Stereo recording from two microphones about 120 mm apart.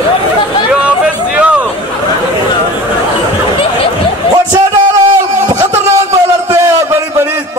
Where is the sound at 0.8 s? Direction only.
10° right (ahead or behind).